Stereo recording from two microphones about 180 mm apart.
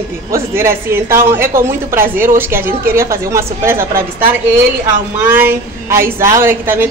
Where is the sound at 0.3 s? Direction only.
15° right (ahead or behind).